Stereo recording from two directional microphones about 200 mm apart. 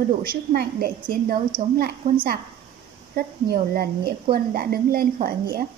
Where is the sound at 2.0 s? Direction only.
30° right (ahead or behind).